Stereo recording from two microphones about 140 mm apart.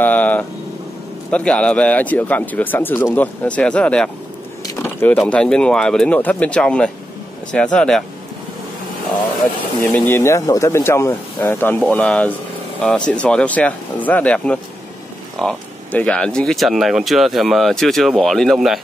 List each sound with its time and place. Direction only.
0.0 s vehicle: 10° left (ahead or behind)
1.3 s speech: 10° left (ahead or behind)
9.9 s speech: 15° left (ahead or behind); by 18.8 s centre (ahead or behind)